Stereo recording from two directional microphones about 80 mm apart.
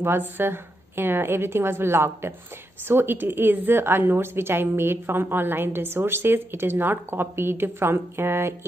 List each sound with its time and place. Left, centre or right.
0.0 s a woman's voice: right